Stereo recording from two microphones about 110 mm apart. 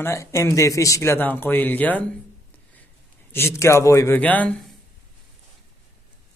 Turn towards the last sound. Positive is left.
turn(degrees=15)  # may be behind; listen again after turning